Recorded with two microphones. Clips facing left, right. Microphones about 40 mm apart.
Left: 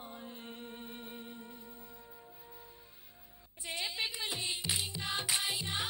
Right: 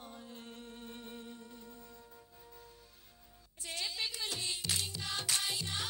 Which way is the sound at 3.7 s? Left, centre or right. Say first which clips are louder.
Left 2 dB; left.